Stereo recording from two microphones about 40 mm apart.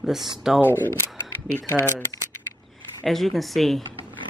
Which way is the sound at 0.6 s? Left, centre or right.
Left.